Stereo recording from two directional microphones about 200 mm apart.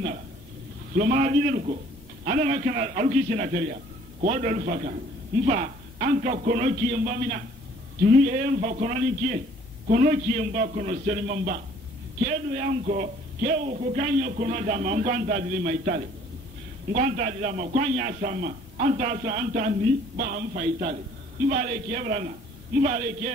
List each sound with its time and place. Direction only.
0.9 s a man's voice: 40° right (ahead or behind)